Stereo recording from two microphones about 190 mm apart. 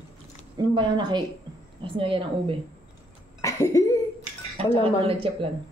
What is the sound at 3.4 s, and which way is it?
Cough, 15° left (ahead or behind).